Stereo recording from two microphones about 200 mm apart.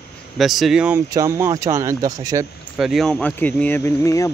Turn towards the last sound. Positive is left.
turn(degrees=15)  # may be behind; listen again after turning